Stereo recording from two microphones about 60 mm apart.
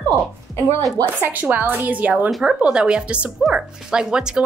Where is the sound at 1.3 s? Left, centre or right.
Right.